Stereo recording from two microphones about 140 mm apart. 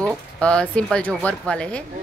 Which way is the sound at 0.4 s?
5° left (ahead or behind).